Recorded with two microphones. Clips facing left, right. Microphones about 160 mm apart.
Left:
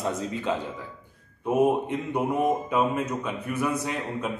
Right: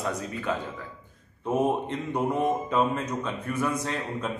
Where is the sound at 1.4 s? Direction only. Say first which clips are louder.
Left 3 dB; 10° left (ahead or behind).